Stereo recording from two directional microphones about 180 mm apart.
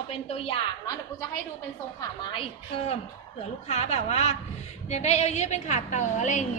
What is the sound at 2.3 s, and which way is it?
A woman's voice, 30° left (ahead or behind).